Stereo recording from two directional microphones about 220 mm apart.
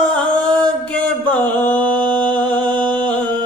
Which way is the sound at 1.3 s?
20° right (ahead or behind).